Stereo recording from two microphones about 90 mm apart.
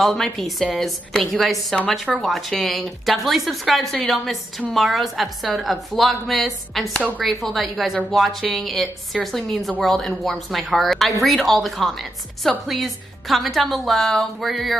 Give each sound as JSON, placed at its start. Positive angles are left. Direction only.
{"t": 0.0, "sound": "a woman's voice", "side_deg": 0}